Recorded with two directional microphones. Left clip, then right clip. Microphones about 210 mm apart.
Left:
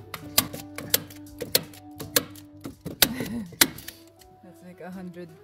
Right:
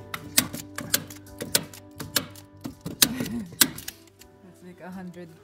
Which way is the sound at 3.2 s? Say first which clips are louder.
Right 1 dB; 15° left (ahead or behind).